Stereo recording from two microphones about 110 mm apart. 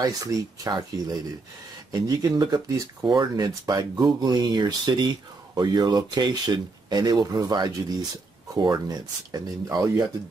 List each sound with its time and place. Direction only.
0.0 s speech: 30° right (ahead or behind)